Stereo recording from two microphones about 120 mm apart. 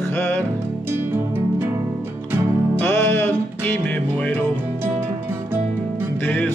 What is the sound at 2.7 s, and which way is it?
Music, 20° left (ahead or behind).